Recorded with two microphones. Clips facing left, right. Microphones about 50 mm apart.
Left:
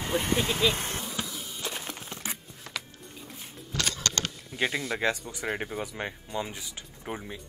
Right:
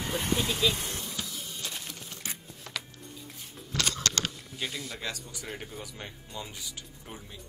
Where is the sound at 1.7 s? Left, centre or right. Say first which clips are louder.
Left 4 dB; left.